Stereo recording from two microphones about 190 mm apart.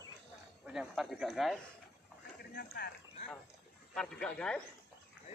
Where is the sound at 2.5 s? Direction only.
55° left (ahead or behind).